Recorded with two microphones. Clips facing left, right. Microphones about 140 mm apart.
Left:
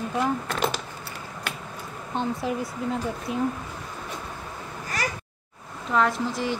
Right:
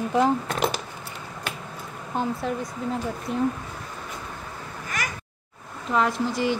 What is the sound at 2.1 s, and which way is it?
A woman's voice, 5° right (ahead or behind).